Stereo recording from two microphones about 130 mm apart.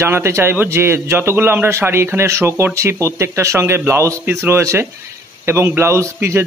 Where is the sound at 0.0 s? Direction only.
20° right (ahead or behind).